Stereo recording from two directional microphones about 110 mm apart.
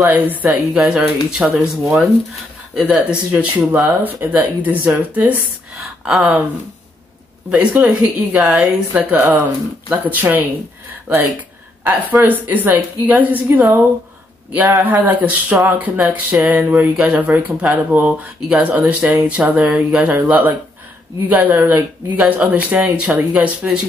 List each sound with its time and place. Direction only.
0.0 s speech: 15° right (ahead or behind)
7.7 s speech: 15° right (ahead or behind)
11.8 s speech: 15° right (ahead or behind)